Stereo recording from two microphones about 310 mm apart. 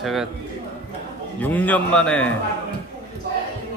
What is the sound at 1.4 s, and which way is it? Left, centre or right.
Speech, centre.